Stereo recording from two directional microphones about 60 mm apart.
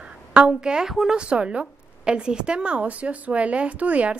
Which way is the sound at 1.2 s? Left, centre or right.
Centre.